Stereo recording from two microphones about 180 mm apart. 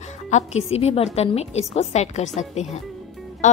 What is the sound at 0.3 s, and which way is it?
Speech, 40° left (ahead or behind).